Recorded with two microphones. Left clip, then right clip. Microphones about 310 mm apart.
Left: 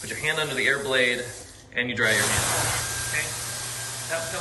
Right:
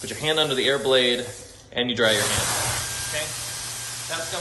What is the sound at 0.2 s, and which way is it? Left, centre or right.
A man's voice, centre.